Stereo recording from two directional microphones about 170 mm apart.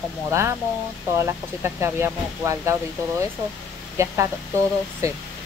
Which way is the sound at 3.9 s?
15° right (ahead or behind).